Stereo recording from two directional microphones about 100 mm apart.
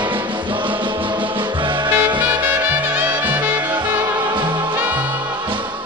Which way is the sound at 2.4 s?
15° right (ahead or behind).